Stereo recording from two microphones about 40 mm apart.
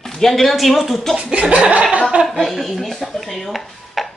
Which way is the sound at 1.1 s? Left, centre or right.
Right.